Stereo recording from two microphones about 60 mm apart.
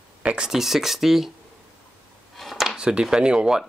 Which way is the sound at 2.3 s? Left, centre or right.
Centre.